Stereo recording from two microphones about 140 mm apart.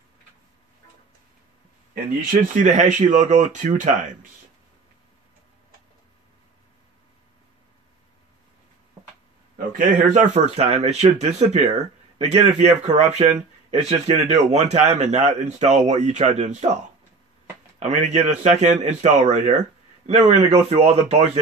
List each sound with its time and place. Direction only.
2.3 s speech: 65° right (ahead or behind)
9.6 s speech: 75° right (ahead or behind); by 16.7 s 55° right (ahead or behind)
17.7 s speech: 55° right (ahead or behind)